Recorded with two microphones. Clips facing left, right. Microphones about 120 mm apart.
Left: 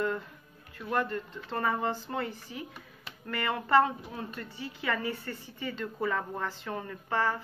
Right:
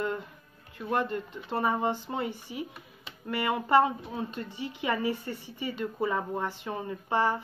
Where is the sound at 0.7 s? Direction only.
20° right (ahead or behind).